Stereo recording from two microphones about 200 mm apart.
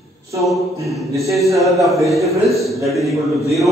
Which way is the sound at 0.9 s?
Centre (ahead or behind).